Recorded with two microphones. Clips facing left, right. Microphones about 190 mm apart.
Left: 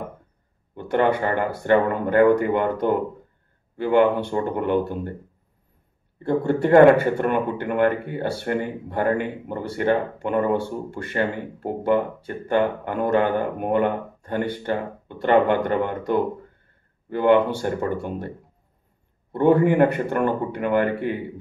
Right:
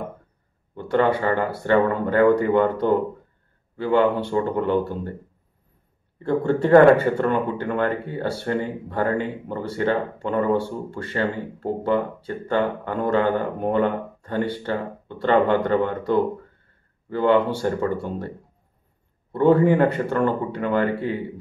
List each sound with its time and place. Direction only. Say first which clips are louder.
0.7 s speech: even; 15° left (ahead or behind)
6.2 s speech: even; 15° left (ahead or behind)
17.1 s speech: left 1 dB; 15° left (ahead or behind)
19.3 s speech: right 1 dB; 20° left (ahead or behind)